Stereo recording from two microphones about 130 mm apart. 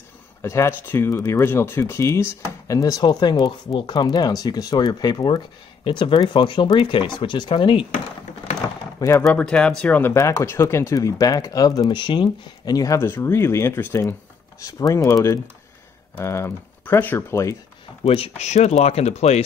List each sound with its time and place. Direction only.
0.4 s speech: 20° left (ahead or behind); by 7.8 s 40° left (ahead or behind)
9.3 s speech: 5° left (ahead or behind); by 15.1 s 25° left (ahead or behind)
16.2 s speech: 20° left (ahead or behind)
18.0 s speech: 50° left (ahead or behind)